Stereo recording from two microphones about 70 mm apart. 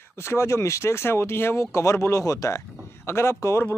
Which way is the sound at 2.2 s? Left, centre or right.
Left.